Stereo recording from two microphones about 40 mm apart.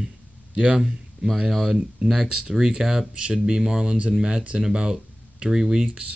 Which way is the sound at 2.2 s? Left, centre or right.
Centre.